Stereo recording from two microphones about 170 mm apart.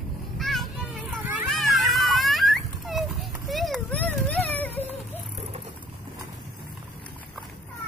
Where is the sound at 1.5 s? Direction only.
Centre (ahead or behind).